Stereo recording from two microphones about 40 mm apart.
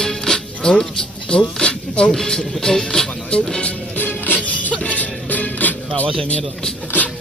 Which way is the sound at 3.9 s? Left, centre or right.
Left.